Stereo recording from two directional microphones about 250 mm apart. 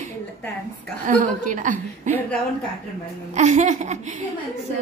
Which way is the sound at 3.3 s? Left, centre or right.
Right.